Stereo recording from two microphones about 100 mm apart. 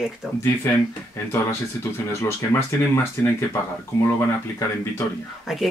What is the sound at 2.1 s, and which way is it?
Speech, 25° left (ahead or behind).